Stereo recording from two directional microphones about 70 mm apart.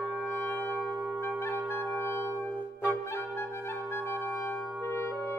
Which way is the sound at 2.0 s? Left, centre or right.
Left.